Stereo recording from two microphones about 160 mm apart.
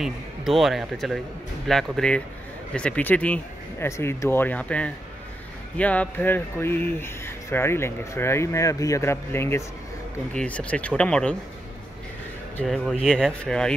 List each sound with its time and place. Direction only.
0.0 s speech: centre (ahead or behind)
12.6 s speech: centre (ahead or behind)